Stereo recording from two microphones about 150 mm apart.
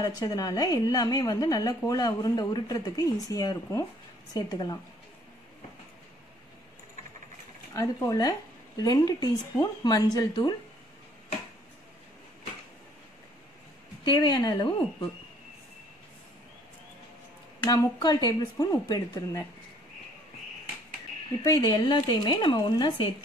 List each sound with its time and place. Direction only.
0.0 s a woman's voice: 25° left (ahead or behind)
7.7 s a woman's voice: 20° left (ahead or behind)
14.0 s a woman's voice: 30° left (ahead or behind)
17.6 s a woman's voice: 25° left (ahead or behind)
21.5 s a woman's voice: 25° left (ahead or behind)